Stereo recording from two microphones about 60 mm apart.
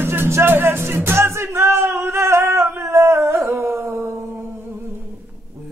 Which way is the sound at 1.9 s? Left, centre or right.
Right.